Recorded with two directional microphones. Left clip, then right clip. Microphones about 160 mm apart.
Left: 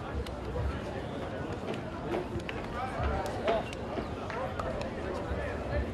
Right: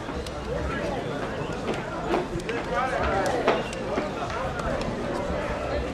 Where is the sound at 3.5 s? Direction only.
20° right (ahead or behind).